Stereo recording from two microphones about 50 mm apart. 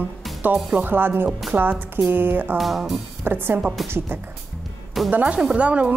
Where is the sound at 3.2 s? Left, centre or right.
Right.